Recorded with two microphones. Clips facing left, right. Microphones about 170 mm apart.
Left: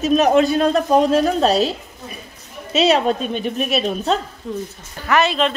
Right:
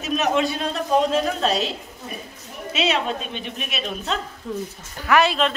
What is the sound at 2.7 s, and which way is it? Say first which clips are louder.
A woman's voice: left 7 dB; 35° left (ahead or behind).